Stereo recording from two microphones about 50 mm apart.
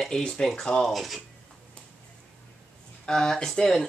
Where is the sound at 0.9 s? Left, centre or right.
Centre.